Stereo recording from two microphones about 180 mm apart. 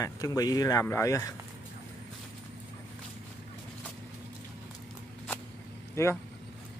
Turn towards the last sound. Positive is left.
turn(degrees=15)  # may be behind; listen again after turning